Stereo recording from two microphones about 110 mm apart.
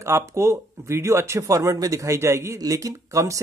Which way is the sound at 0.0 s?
25° right (ahead or behind).